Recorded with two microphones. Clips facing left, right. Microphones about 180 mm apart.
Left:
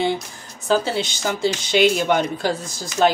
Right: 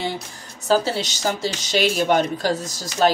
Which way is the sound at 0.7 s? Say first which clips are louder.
Even; 40° right (ahead or behind).